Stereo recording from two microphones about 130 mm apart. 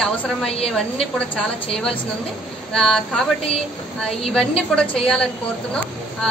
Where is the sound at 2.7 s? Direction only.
5° left (ahead or behind).